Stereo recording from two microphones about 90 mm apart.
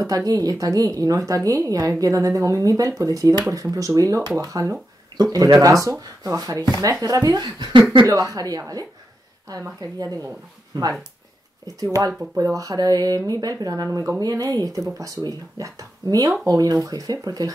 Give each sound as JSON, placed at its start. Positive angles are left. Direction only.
{"t": 0.0, "sound": "speech", "side_deg": -40}
{"t": 11.6, "sound": "speech", "side_deg": -40}